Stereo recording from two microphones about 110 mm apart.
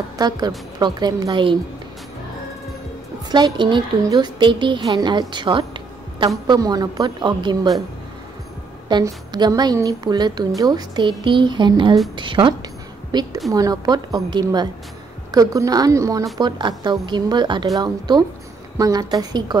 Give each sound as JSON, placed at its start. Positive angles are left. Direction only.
{"t": 0.2, "sound": "a woman's voice", "side_deg": -35}
{"t": 3.3, "sound": "a woman's voice", "side_deg": -40}
{"t": 9.0, "sound": "a woman's voice", "side_deg": -35}
{"t": 16.3, "sound": "a woman's voice", "side_deg": -40}